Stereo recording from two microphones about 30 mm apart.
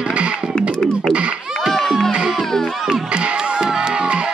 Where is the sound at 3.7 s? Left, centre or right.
Right.